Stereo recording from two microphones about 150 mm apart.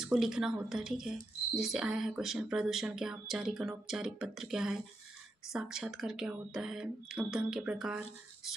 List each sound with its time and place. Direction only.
0.0 s speech: 5° right (ahead or behind)